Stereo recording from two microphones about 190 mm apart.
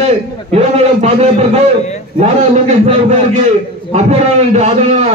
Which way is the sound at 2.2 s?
35° right (ahead or behind).